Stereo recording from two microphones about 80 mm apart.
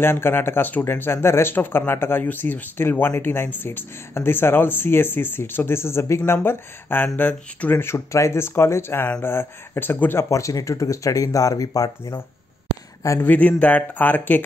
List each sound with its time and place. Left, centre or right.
0.0 s speech: left
10.3 s speech: left
13.2 s speech: left